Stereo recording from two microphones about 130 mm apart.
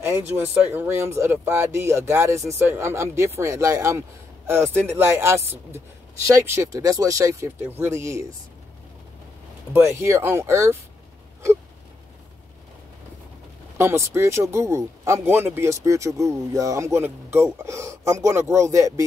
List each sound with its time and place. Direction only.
0.7 s speech: 15° right (ahead or behind)
9.7 s speech: 15° right (ahead or behind)
13.7 s speech: 20° right (ahead or behind)